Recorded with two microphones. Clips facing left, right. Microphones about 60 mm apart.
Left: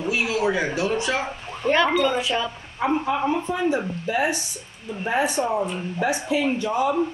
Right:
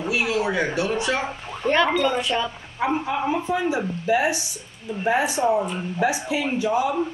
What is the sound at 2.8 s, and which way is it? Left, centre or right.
Speech, centre.